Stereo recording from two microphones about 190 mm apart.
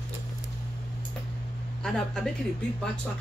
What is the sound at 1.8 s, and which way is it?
Speech, 5° left (ahead or behind).